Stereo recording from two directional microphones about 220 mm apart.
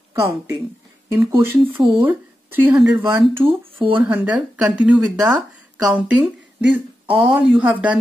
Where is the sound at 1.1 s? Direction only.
15° right (ahead or behind).